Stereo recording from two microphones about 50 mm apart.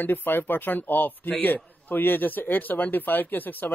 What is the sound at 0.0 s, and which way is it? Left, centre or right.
A man's voice, left.